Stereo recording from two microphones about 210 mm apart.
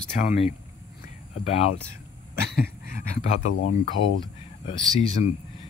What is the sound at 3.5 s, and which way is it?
Speech, 85° left.